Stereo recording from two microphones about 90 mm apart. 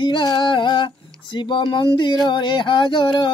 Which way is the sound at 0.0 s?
55° left (ahead or behind).